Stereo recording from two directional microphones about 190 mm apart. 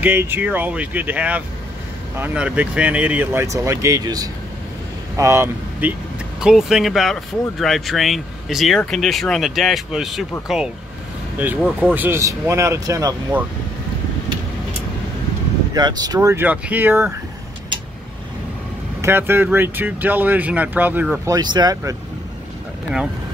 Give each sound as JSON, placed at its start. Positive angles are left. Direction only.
{"t": 0.0, "sound": "speech", "side_deg": -10}
{"t": 11.8, "sound": "speech", "side_deg": -10}
{"t": 15.7, "sound": "speech", "side_deg": -20}
{"t": 18.9, "sound": "speech", "side_deg": -15}
{"t": 21.3, "sound": "speech", "side_deg": -20}